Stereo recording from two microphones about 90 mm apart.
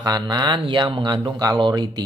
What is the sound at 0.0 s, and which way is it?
A man's voice, 50° right (ahead or behind).